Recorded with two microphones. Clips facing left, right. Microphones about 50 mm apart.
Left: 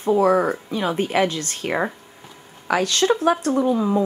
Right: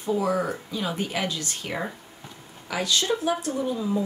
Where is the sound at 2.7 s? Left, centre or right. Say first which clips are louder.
Left 6 dB; left.